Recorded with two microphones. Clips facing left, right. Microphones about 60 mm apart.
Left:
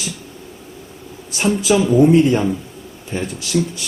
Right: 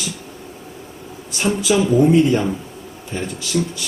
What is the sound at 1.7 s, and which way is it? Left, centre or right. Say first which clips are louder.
Speech: left 2 dB; centre.